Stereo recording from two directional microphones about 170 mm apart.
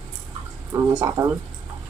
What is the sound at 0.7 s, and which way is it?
Speech, 20° right (ahead or behind).